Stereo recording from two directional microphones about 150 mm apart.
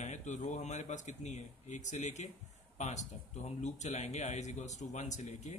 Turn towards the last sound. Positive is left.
turn(degrees=50)  # may be behind; listen again after turning